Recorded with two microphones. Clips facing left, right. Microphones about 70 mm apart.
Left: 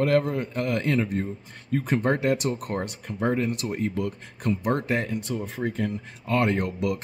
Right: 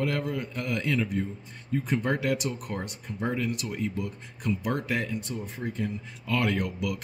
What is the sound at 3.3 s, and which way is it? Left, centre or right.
A man's voice, left.